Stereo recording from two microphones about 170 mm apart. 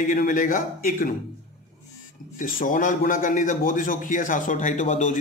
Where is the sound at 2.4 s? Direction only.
55° left (ahead or behind).